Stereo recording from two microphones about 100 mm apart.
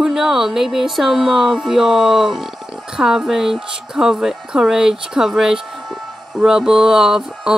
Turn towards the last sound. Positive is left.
turn(degrees=-5)  # may be behind; listen again after turning